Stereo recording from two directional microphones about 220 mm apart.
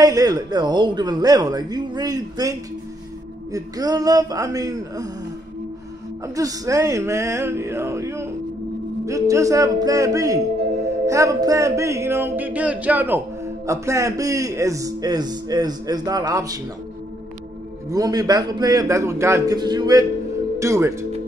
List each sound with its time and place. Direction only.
0.0 s speech: 15° right (ahead or behind)
3.5 s speech: 15° right (ahead or behind)
6.2 s speech: 15° right (ahead or behind)
17.8 s speech: 15° right (ahead or behind)